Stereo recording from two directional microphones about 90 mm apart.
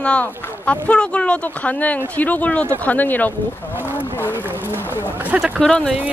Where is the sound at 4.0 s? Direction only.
25° left (ahead or behind).